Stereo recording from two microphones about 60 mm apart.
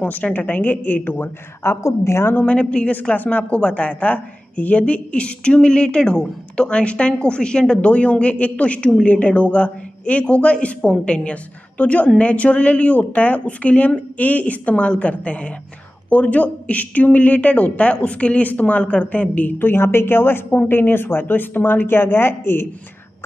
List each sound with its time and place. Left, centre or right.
0.0 s a woman's voice: left
1.6 s a woman's voice: left
2.3 s a woman's voice: left